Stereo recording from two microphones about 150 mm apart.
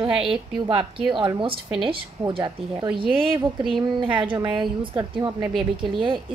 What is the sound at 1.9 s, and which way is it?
A woman's voice, 35° right (ahead or behind).